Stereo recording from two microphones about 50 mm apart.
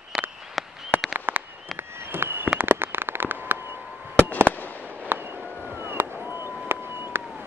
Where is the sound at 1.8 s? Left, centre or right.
Right.